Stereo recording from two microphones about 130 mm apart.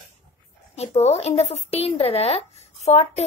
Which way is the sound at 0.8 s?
55° left (ahead or behind).